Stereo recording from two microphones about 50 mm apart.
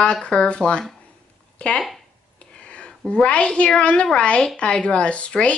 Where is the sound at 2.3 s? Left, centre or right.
Left.